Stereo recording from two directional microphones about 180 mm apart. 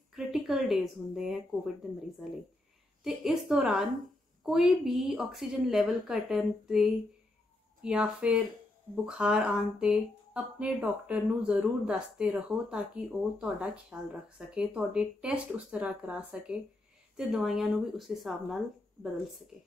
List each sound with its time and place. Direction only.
0.1 s speech: centre (ahead or behind)